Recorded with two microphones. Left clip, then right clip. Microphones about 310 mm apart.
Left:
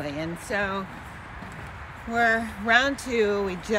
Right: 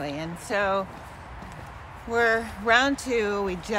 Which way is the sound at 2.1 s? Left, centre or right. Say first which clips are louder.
Even; centre.